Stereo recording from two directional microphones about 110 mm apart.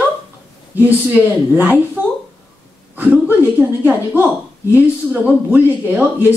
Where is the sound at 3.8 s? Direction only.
15° right (ahead or behind).